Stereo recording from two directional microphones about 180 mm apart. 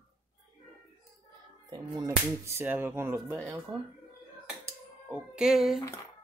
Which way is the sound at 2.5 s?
15° right (ahead or behind).